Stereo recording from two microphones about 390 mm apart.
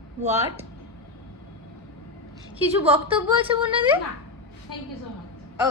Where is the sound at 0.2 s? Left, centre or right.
Centre.